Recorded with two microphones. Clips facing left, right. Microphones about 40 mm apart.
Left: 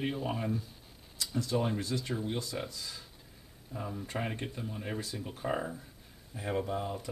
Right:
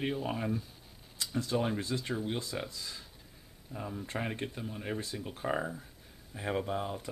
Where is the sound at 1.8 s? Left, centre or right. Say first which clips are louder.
Even; right.